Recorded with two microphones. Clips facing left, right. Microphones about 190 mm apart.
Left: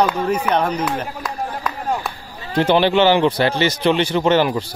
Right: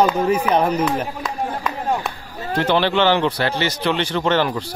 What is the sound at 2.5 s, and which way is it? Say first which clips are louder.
Speech: left 3 dB; 15° left (ahead or behind).